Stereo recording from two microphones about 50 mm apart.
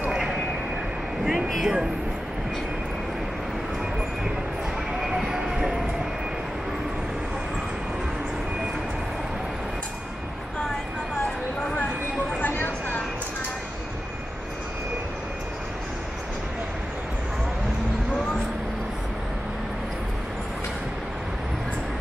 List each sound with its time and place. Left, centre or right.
1.2 s speech: centre
5.0 s train: centre
12.4 s a sound: left